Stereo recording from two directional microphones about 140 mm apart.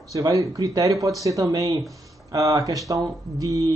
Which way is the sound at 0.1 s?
25° right (ahead or behind).